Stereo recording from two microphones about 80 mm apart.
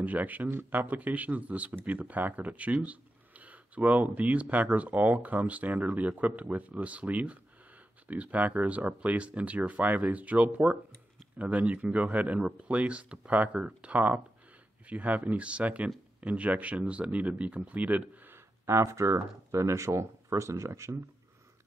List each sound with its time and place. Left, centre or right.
0.0 s speech: right
18.7 s speech: right